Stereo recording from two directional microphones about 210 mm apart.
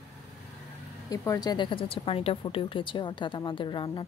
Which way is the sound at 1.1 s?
15° left (ahead or behind).